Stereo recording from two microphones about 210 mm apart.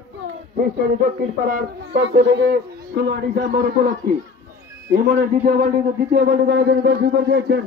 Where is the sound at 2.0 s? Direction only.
55° right (ahead or behind); by 5.7 s 35° right (ahead or behind).